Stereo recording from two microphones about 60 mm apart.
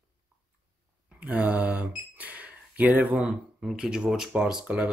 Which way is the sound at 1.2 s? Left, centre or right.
Right.